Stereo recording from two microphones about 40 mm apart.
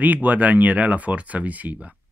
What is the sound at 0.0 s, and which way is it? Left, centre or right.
Speech, right.